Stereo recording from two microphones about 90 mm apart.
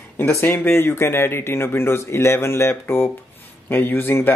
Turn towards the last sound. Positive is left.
turn(degrees=20)  # may be behind; listen again after turning